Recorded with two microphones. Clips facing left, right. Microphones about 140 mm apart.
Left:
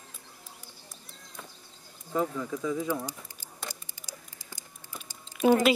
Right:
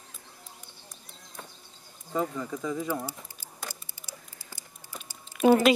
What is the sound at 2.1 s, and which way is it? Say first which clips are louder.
Speech: left 1 dB; centre (ahead or behind).